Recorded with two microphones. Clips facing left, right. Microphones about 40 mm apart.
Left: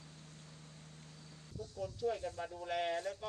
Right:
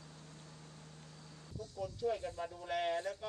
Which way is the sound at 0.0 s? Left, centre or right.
Right.